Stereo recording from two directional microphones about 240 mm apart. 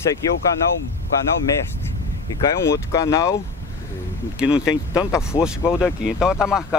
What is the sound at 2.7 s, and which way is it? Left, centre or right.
Speech, centre.